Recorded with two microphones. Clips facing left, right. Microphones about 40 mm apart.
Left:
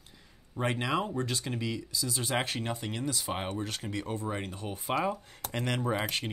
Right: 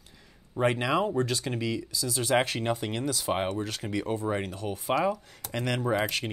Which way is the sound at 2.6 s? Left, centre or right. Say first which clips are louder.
Right 5 dB; centre.